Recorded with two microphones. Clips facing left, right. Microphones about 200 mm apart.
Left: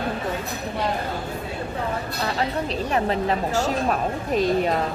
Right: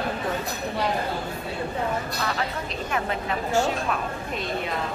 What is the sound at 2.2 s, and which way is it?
Speech, 35° left (ahead or behind).